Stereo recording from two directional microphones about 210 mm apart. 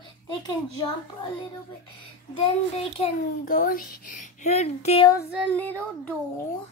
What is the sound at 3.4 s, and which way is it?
A child's voice, 40° left (ahead or behind).